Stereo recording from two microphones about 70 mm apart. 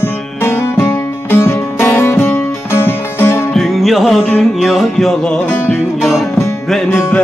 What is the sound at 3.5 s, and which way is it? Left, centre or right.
Music, centre.